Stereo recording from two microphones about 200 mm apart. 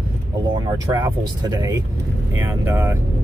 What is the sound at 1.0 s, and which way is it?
Speech, 20° right (ahead or behind).